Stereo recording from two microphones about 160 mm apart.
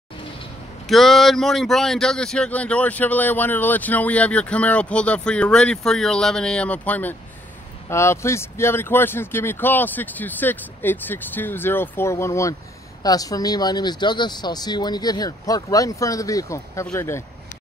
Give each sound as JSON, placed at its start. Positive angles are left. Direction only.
{"t": 0.8, "sound": "speech", "side_deg": 0}